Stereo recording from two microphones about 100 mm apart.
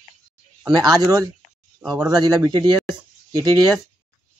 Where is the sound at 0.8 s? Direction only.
40° right (ahead or behind).